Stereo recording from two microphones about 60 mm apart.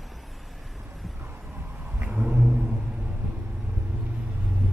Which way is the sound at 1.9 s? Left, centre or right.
Right.